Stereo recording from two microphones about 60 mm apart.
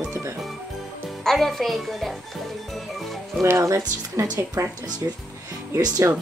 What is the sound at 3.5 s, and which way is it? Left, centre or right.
Speech, right.